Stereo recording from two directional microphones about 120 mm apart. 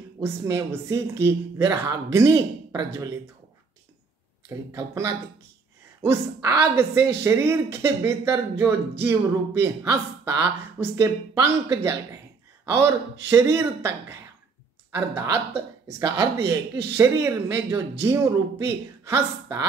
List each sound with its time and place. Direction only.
0.2 s a woman's voice: 20° right (ahead or behind)
4.5 s a woman's voice: 25° right (ahead or behind)
16.3 s a woman's voice: 20° right (ahead or behind)